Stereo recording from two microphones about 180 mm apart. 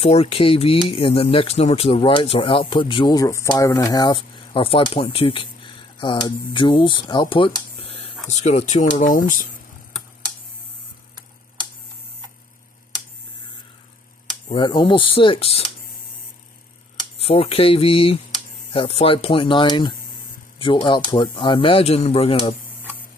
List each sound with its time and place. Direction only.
0.0 s speech: 35° left (ahead or behind)
14.5 s speech: 25° left (ahead or behind)
17.2 s speech: 35° left (ahead or behind)